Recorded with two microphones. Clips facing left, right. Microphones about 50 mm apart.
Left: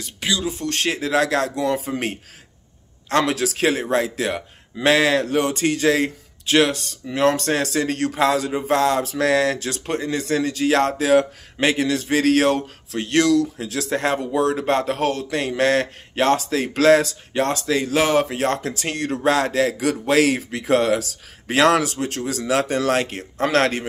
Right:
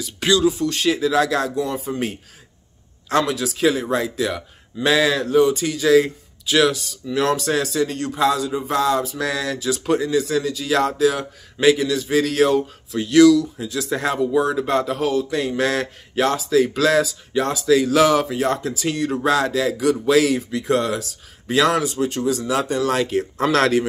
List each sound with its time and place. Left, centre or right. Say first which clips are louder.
0.7 s a man's voice: right 3 dB; left
1.9 s a man's voice: even; left
3.9 s a man's voice: left 1 dB; left
13.8 s a man's voice: right 1 dB; left
17.6 s a man's voice: right 8 dB; left
22.9 s a man's voice: right 2 dB; left